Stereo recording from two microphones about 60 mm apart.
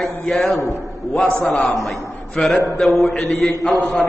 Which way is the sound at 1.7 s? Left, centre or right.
Centre.